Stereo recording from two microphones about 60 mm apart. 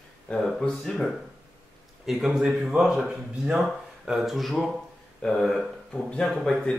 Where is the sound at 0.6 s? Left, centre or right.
Centre.